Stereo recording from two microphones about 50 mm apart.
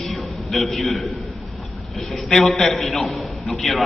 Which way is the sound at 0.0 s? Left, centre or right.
Centre.